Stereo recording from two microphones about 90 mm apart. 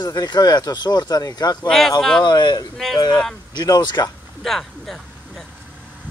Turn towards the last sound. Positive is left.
turn(degrees=0)  # may be behind; listen again after turning